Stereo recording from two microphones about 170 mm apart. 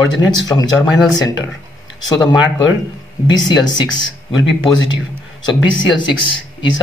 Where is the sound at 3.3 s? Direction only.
25° left (ahead or behind).